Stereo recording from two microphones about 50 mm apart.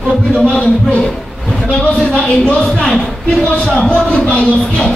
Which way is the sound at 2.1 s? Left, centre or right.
Left.